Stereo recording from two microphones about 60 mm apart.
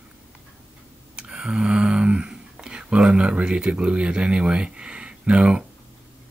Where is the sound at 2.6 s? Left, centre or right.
Centre.